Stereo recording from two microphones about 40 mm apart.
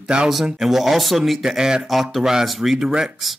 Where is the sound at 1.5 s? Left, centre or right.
Centre.